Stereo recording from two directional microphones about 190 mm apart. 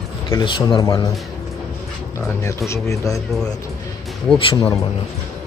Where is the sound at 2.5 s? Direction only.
15° left (ahead or behind).